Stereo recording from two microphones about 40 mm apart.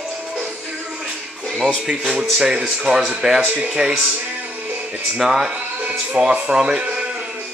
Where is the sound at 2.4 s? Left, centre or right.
Centre.